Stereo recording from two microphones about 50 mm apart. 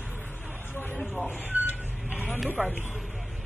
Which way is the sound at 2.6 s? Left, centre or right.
Centre.